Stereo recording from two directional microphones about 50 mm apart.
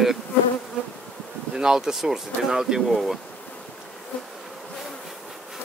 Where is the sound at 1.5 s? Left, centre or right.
Centre.